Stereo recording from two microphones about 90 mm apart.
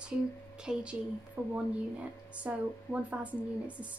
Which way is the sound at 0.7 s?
10° right (ahead or behind).